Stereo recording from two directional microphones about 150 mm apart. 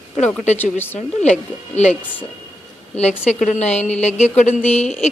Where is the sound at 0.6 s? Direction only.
15° left (ahead or behind).